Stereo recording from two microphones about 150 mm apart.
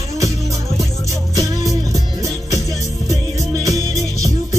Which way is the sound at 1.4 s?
20° right (ahead or behind).